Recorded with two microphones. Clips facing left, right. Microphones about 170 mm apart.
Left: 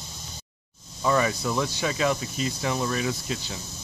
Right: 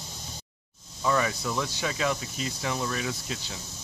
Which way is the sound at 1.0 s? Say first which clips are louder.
Left 3 dB; 25° left (ahead or behind).